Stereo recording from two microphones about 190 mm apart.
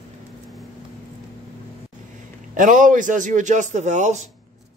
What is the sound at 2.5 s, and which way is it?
Speech, 40° right (ahead or behind).